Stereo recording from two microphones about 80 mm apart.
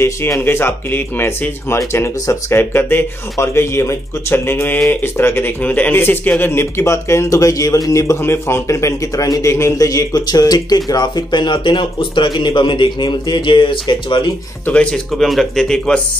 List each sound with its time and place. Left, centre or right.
0.0 s speech: left
8.2 s a man's voice: left
14.7 s speech: centre
15.1 s speech: centre